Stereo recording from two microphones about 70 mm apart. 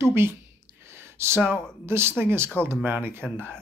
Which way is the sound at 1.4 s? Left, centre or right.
Right.